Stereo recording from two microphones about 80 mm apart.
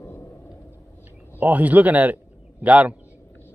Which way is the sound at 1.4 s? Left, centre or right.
Centre.